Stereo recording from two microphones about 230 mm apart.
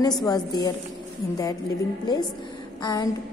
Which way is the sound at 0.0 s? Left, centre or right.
Centre.